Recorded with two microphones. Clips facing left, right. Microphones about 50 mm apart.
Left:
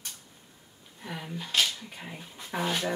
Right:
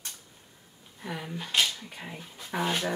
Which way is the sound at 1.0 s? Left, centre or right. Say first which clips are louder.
Right 1 dB; centre.